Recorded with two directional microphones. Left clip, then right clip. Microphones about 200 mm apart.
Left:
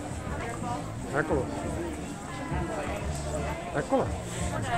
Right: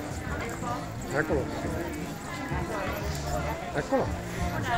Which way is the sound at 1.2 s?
Centre (ahead or behind).